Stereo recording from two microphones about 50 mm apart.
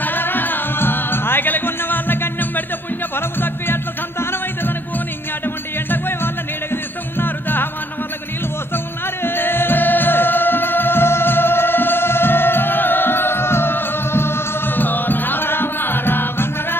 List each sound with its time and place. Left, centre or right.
0.0 s music: left
5.9 s music: left
8.7 s music: left